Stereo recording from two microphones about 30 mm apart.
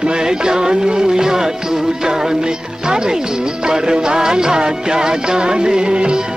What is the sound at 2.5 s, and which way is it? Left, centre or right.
Speech, right.